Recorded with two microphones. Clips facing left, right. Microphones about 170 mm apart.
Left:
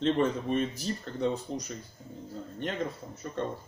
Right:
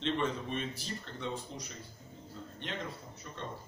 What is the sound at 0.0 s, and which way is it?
Speech, 40° left (ahead or behind).